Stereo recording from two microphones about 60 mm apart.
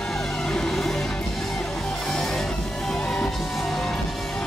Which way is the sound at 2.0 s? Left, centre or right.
Centre.